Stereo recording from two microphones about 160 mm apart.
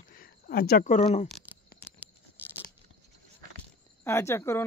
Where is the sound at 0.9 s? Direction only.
45° left (ahead or behind).